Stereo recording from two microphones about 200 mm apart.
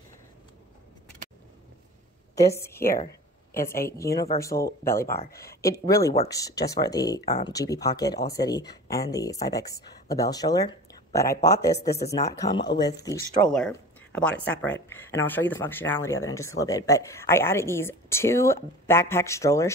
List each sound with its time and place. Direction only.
2.4 s speech: 15° left (ahead or behind)
3.5 s a woman's voice: 45° left (ahead or behind)
4.0 s speech: 15° left (ahead or behind)
5.3 s speech: 50° left (ahead or behind)
5.6 s speech: 15° left (ahead or behind)
13.7 s a sound: 5° left (ahead or behind)
14.4 s speech: 5° left (ahead or behind)